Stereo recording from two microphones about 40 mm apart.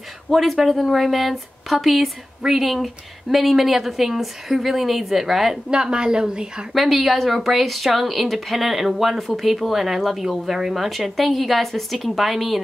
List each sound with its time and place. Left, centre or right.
0.3 s speech: centre
2.4 s speech: centre
2.7 s speech: centre
5.7 s a woman's voice: right
6.7 s speech: centre